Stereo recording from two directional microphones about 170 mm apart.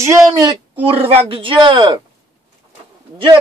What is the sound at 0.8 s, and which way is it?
Speech, 35° right (ahead or behind).